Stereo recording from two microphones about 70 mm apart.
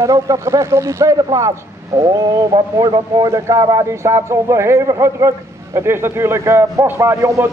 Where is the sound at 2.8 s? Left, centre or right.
Right.